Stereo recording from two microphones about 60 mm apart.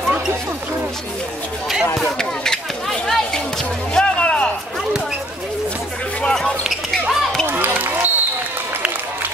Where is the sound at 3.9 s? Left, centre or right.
Centre.